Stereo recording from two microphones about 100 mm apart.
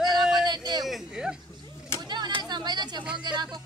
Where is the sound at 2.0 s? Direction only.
45° right (ahead or behind).